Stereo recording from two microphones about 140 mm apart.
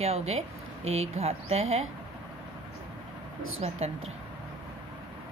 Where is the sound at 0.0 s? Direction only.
50° right (ahead or behind).